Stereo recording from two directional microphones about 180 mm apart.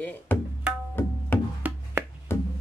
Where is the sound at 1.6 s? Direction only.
10° right (ahead or behind).